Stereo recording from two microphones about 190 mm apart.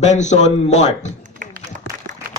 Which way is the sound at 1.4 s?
40° right (ahead or behind).